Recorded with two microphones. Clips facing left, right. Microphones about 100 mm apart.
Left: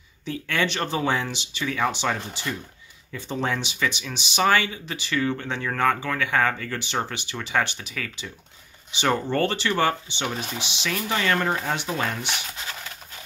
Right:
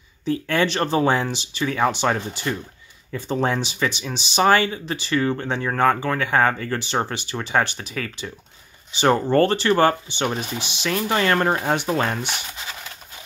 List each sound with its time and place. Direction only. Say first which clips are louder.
0.2 s speech: right 5 dB; 35° right (ahead or behind)